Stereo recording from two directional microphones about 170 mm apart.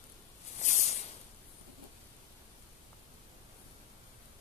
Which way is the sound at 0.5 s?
45° left (ahead or behind).